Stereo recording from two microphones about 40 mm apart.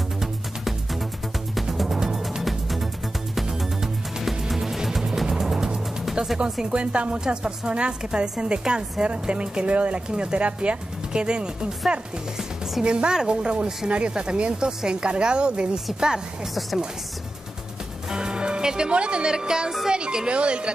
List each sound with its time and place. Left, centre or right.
1.5 s music: centre
2.4 s music: centre
6.2 s music: right
6.6 s a woman's voice: right
12.8 s a woman's voice: right
18.1 s a woman's voice: right